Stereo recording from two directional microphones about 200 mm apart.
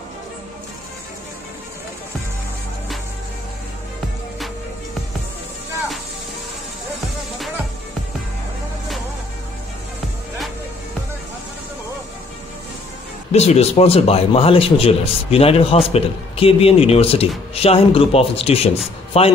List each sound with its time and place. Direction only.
13.3 s speech: 35° left (ahead or behind)